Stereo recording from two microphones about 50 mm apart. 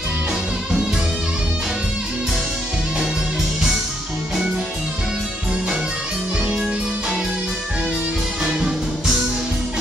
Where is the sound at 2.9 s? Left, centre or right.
Centre.